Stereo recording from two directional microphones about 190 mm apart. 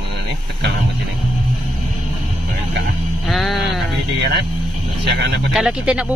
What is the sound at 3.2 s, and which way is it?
Speech, centre (ahead or behind).